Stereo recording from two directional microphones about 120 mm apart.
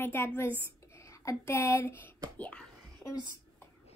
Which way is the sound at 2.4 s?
10° left (ahead or behind).